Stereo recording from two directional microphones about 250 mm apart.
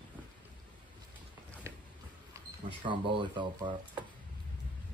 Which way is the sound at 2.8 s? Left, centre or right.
Centre.